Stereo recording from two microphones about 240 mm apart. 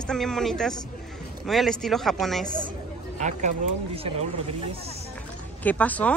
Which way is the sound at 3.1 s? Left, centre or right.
Right.